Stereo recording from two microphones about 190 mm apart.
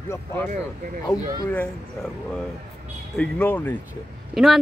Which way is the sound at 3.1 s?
5° left (ahead or behind).